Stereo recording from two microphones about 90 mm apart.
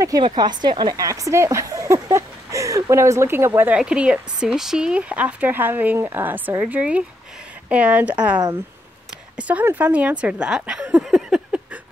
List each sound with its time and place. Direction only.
0.2 s a woman's voice: 55° right (ahead or behind)
1.0 s speech: 40° right (ahead or behind)
3.7 s a woman's voice: 10° right (ahead or behind)
9.4 s speech: 15° right (ahead or behind)